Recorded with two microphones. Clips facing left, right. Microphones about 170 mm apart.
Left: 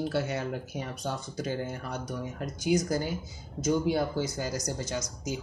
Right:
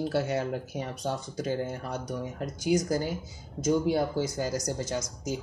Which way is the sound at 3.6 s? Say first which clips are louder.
Right 1 dB; 40° right (ahead or behind).